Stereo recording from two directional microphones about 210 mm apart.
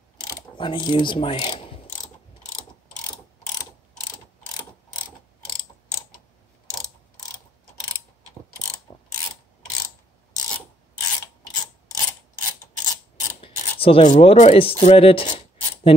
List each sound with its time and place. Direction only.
0.6 s speech: 20° left (ahead or behind)
8.9 s mechanisms: 20° left (ahead or behind)
12.8 s mechanisms: 20° left (ahead or behind)
13.7 s speech: 25° left (ahead or behind)